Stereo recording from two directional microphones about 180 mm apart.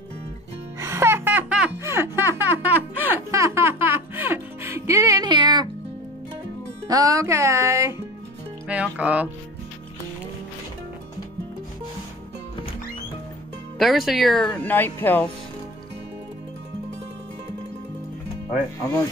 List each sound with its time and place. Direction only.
0.7 s music: 15° right (ahead or behind)
6.9 s speech: 20° right (ahead or behind)
13.7 s speech: centre (ahead or behind)